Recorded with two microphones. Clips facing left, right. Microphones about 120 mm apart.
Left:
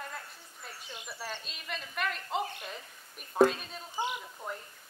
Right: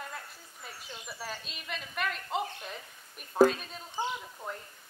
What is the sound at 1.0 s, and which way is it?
A woman's voice, centre (ahead or behind).